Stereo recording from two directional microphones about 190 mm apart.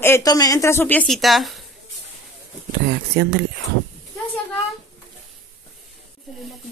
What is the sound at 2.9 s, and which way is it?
Speech, 60° right (ahead or behind).